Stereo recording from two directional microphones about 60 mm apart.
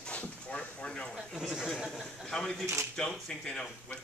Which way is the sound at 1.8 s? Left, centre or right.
Centre.